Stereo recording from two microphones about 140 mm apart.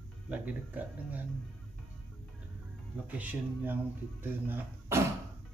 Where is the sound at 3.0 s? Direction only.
10° right (ahead or behind).